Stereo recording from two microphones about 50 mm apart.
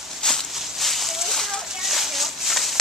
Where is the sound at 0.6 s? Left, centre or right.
Centre.